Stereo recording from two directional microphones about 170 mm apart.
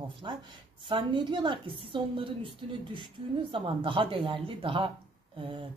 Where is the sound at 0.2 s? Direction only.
30° right (ahead or behind).